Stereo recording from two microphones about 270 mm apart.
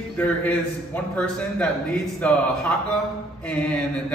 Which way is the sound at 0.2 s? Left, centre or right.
Centre.